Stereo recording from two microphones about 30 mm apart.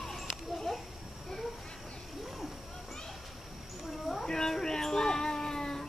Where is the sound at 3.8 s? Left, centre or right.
Centre.